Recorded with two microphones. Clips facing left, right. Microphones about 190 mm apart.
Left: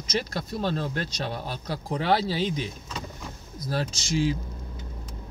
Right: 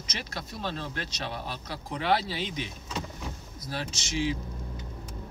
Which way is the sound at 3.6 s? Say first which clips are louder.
Left 6 dB; 35° left (ahead or behind).